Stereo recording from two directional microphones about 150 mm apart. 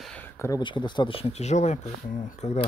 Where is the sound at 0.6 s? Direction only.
30° left (ahead or behind).